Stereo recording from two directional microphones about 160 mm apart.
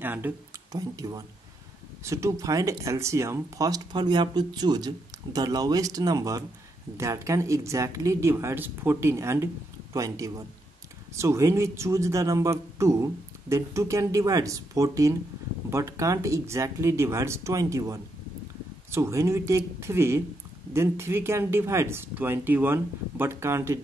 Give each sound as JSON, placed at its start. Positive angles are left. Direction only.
{"t": 0.0, "sound": "speech", "side_deg": -10}
{"t": 0.7, "sound": "speech", "side_deg": -20}